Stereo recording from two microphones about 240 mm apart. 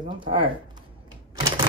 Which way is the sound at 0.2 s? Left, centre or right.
Right.